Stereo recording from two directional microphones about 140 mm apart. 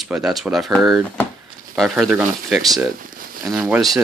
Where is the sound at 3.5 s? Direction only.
5° right (ahead or behind).